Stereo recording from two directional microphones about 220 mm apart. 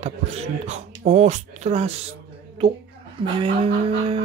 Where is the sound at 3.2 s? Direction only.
25° right (ahead or behind).